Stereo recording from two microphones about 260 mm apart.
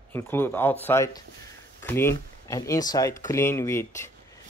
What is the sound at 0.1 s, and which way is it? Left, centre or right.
Speech, centre.